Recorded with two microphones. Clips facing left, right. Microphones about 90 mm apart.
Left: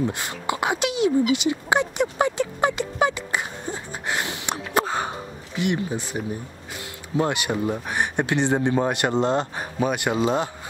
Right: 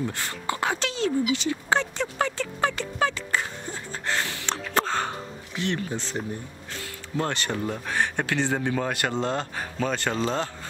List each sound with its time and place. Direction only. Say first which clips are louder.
0.0 s speech: left 4 dB; 15° left (ahead or behind)
1.3 s a sound: left 3 dB; 15° left (ahead or behind)
5.6 s speech: left 4 dB; 15° left (ahead or behind)